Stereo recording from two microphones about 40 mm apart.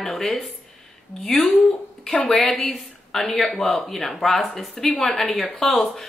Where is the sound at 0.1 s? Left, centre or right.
Centre.